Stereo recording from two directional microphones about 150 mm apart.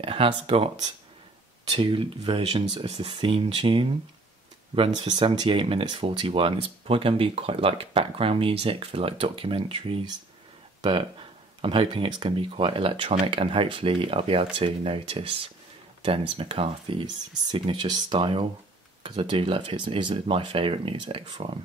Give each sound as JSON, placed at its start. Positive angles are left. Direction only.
{"t": 0.0, "sound": "speech", "side_deg": -40}
{"t": 1.7, "sound": "speech", "side_deg": -35}